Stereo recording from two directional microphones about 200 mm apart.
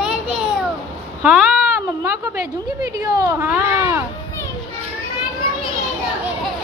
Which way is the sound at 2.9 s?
15° right (ahead or behind).